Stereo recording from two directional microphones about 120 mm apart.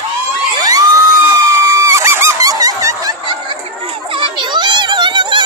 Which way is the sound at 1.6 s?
25° right (ahead or behind).